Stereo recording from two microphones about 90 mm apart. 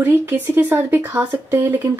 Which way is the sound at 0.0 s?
20° right (ahead or behind).